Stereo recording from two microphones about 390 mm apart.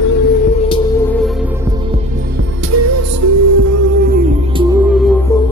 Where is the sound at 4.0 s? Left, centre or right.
Right; by 5.5 s centre.